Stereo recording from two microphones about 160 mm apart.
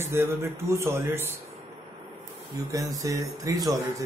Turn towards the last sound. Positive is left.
turn(degrees=-20)  # may be behind; listen again after turning